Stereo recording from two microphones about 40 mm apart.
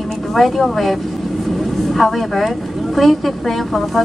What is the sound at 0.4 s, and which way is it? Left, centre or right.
Speech, centre.